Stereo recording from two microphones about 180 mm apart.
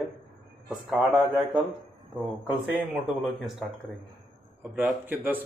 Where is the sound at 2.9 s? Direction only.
Centre (ahead or behind).